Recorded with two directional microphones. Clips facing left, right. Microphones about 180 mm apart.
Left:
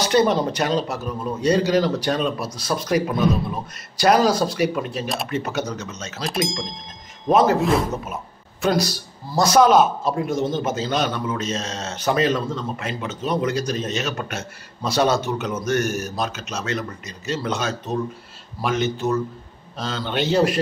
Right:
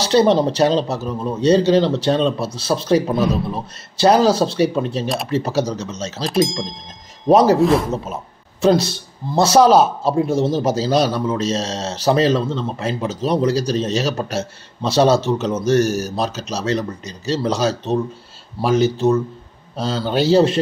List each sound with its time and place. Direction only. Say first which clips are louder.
0.0 s a man's voice: right 4 dB; 30° right (ahead or behind)
5.0 s speech: right 4 dB; centre (ahead or behind)
5.3 s a man's voice: right 6 dB; 30° right (ahead or behind)
6.2 s speech: right 6 dB; centre (ahead or behind)
7.2 s a man's voice: right 5 dB; 35° right (ahead or behind)